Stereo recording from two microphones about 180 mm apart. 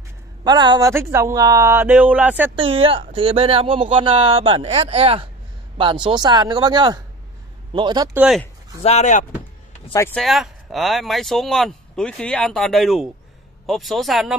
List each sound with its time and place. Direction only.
0.4 s speech: 25° right (ahead or behind)
2.5 s speech: 30° right (ahead or behind)
8.1 s speech: 10° right (ahead or behind)
8.8 s speech: 40° left (ahead or behind)
9.9 s speech: 10° left (ahead or behind)
10.2 s speech: centre (ahead or behind)